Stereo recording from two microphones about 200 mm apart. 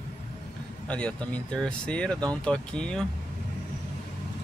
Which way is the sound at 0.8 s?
5° left (ahead or behind).